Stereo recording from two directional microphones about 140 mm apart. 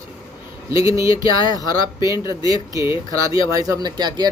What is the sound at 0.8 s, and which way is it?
Speech, 20° right (ahead or behind).